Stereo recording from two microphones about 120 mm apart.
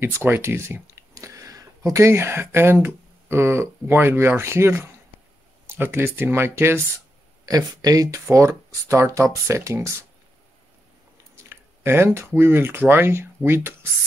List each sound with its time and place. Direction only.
0.0 s speech: 20° right (ahead or behind)
7.4 s speech: 30° right (ahead or behind)
11.3 s speech: 20° right (ahead or behind)